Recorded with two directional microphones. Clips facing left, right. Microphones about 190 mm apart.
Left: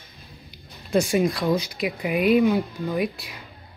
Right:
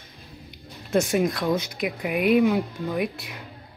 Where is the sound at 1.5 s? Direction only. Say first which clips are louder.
Left 1 dB; 55° right (ahead or behind).